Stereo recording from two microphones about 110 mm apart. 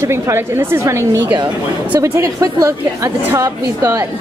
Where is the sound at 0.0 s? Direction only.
25° right (ahead or behind).